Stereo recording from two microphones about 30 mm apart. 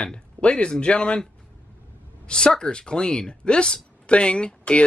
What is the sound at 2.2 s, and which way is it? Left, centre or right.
Speech, left.